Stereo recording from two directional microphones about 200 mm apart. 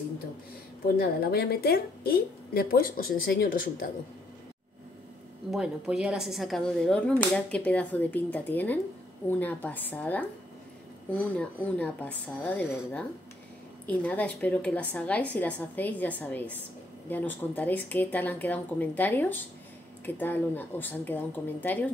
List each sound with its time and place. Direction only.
0.8 s a woman's voice: 50° left (ahead or behind)
5.5 s a woman's voice: 5° right (ahead or behind)